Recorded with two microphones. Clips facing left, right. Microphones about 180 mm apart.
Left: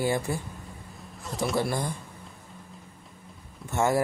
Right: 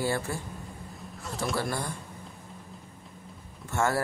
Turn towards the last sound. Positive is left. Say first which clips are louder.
# left 2 dB
turn(degrees=15)  # may be behind; listen again after turning